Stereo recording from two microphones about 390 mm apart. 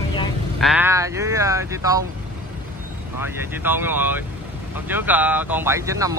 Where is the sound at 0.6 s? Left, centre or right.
Centre.